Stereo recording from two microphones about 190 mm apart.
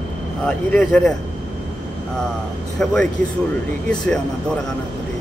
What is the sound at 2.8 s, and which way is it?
A man's voice, 5° left (ahead or behind).